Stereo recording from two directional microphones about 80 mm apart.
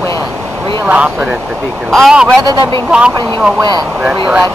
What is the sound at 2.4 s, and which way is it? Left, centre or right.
Speech, right.